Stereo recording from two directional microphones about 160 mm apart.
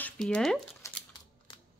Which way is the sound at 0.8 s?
20° left (ahead or behind).